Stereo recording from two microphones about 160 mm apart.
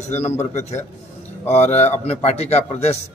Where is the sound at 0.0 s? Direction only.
45° left (ahead or behind).